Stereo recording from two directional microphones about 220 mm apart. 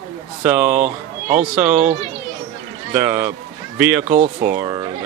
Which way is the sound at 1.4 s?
5° right (ahead or behind).